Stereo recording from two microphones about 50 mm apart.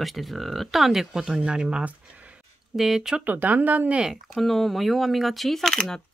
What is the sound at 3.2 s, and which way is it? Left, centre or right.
Speech, right.